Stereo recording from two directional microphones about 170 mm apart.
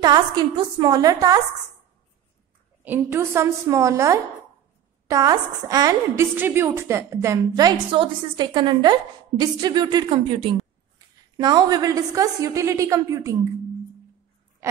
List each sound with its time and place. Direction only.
0.0 s a woman's voice: 25° right (ahead or behind)
2.8 s a woman's voice: 10° right (ahead or behind)
14.6 s oink: 20° right (ahead or behind)